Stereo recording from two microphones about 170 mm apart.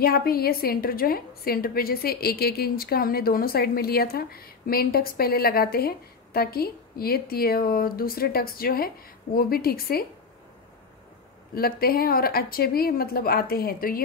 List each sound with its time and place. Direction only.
0.0 s a woman's voice: 60° left (ahead or behind)
11.5 s a woman's voice: 60° left (ahead or behind)